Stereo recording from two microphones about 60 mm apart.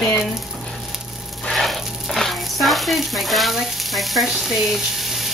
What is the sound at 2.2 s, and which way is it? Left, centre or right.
Frying, centre.